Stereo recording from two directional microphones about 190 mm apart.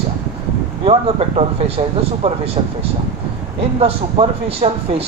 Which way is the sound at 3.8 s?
30° right (ahead or behind).